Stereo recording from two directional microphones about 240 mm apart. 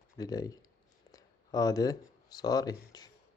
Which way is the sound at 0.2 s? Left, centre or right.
Centre.